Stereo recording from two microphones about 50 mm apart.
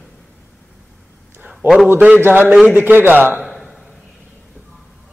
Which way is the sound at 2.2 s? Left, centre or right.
Right.